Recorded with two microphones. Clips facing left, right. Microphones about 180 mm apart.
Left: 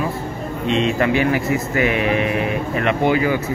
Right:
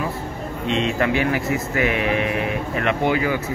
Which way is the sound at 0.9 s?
25° left (ahead or behind).